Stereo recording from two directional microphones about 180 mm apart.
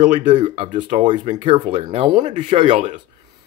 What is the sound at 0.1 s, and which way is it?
Speech, 40° right (ahead or behind).